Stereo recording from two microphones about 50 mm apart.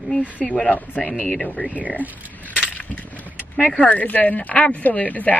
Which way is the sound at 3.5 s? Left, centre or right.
Left.